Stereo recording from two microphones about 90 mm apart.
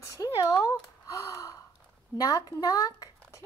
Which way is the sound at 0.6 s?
40° left (ahead or behind).